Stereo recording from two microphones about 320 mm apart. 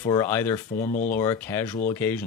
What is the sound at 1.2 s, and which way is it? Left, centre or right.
Speech, centre.